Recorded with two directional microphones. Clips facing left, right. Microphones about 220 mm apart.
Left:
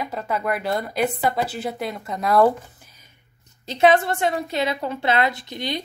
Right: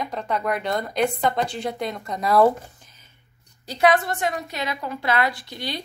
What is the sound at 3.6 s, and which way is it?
A woman's voice, 25° left (ahead or behind).